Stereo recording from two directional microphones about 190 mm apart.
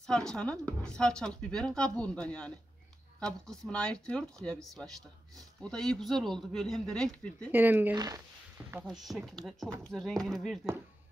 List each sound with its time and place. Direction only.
0.0 s speech: 5° left (ahead or behind)
7.5 s speech: 10° right (ahead or behind)
7.9 s speech: 20° right (ahead or behind)
8.7 s speech: centre (ahead or behind)